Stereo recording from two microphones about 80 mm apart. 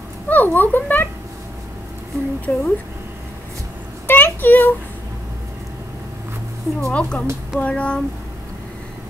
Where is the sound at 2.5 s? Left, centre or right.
Centre.